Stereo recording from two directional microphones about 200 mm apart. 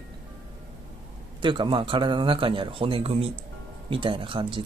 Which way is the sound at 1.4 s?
25° right (ahead or behind).